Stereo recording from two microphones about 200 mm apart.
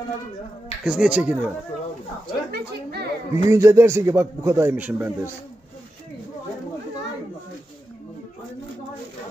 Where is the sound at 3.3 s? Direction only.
15° right (ahead or behind).